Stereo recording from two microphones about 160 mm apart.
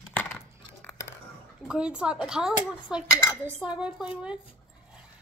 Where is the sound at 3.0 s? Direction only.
20° left (ahead or behind).